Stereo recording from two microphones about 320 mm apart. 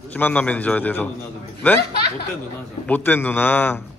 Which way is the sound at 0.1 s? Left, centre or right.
Centre.